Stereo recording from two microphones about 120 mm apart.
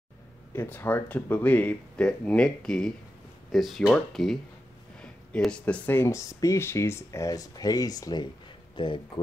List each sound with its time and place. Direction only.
0.5 s speech: 15° left (ahead or behind); by 9.2 s 45° left (ahead or behind)